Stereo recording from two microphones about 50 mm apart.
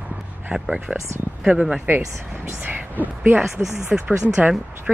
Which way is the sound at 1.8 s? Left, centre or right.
Right.